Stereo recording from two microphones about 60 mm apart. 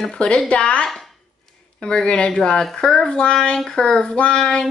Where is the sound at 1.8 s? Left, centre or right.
Centre.